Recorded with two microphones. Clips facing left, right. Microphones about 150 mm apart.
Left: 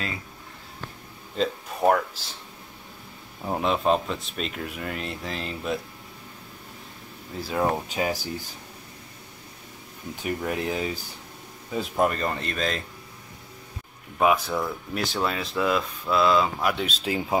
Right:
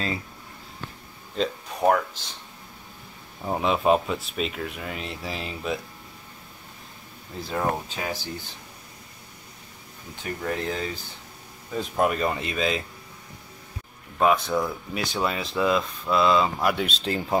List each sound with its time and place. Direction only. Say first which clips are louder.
1.3 s speech: left 1 dB; centre (ahead or behind)
3.4 s speech: right 1 dB; centre (ahead or behind)
7.4 s speech: left 2 dB; 5° left (ahead or behind)
10.2 s speech: left 1 dB; 15° left (ahead or behind); by 12.8 s 5° right (ahead or behind)
14.1 s speech: right 1 dB; 5° left (ahead or behind)